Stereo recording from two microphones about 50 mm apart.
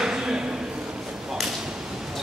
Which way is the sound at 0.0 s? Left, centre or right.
Centre.